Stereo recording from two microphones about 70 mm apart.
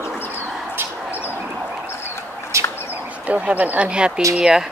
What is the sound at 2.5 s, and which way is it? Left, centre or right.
Bird, right.